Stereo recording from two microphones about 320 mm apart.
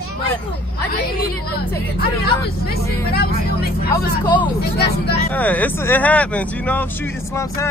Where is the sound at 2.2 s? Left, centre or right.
Left.